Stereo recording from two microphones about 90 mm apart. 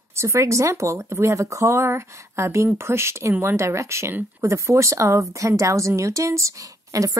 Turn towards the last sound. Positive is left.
turn(degrees=-40)  # may be behind; listen again after turning